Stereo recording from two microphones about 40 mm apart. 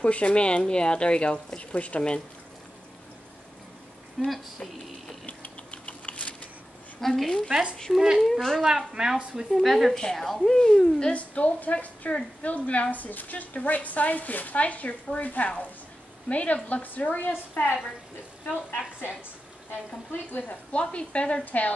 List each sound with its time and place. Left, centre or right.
0.0 s a woman's voice: left
4.2 s speech: centre
5.2 s typing: left
7.0 s a woman's voice: centre
8.6 s speech: centre
9.5 s a woman's voice: centre
11.1 s a woman's voice: left
20.1 s a woman's voice: left
20.7 s speech: left
21.5 s a woman's voice: left